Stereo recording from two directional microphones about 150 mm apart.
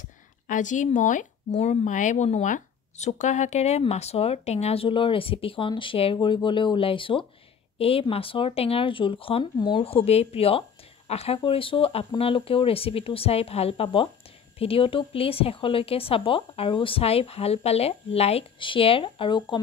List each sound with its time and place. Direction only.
0.5 s a woman's voice: 55° left (ahead or behind); by 19.6 s 35° left (ahead or behind)